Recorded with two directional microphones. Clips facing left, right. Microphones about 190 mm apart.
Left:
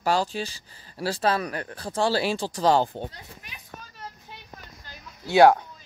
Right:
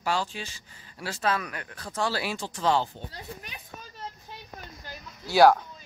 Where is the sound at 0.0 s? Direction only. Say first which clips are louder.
Left 5 dB; 40° left (ahead or behind).